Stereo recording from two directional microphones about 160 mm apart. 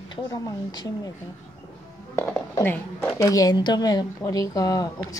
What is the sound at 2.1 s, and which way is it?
A woman's voice, 10° left (ahead or behind).